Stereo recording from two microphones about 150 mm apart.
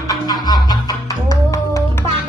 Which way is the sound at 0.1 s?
25° left (ahead or behind).